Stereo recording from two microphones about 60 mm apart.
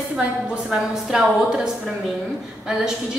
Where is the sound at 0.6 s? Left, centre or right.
Centre.